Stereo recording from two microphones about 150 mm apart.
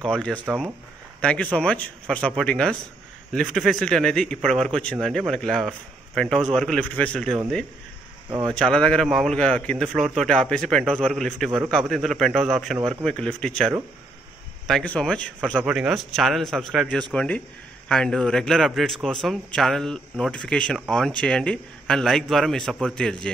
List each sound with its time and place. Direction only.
0.0 s a man's voice: 5° left (ahead or behind)
8.3 s speech: 30° right (ahead or behind)
8.5 s a man's voice: 5° left (ahead or behind)
15.6 s a man's voice: 5° right (ahead or behind)